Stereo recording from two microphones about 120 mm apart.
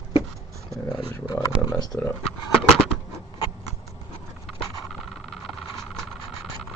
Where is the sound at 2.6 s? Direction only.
5° left (ahead or behind).